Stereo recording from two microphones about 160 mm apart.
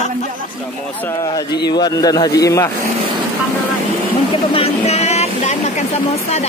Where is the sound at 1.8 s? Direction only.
25° left (ahead or behind).